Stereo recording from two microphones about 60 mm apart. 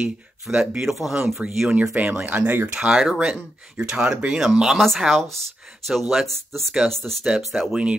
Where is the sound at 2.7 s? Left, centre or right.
Centre.